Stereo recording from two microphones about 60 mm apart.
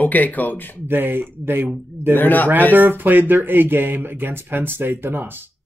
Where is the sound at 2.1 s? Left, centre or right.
Left.